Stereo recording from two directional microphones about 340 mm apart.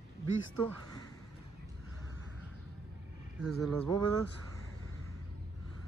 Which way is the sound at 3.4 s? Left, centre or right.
Centre.